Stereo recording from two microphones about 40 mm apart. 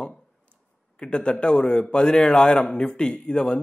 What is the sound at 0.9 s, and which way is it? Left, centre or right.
A man's voice, left.